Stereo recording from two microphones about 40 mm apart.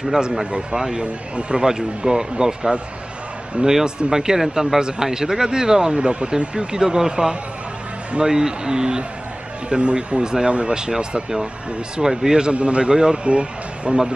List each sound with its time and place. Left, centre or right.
0.5 s speech: right
3.8 s speech: centre